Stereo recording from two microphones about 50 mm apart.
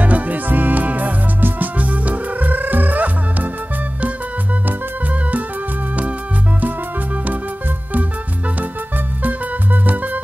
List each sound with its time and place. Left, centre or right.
0.0 s music: right
8.5 s music: right